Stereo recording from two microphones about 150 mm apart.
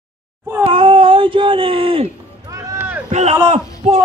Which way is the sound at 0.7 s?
35° right (ahead or behind).